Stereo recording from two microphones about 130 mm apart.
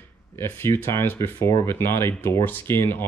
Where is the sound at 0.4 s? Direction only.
20° left (ahead or behind).